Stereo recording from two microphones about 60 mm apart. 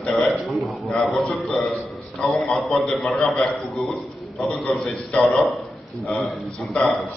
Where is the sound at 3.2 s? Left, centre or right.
Centre.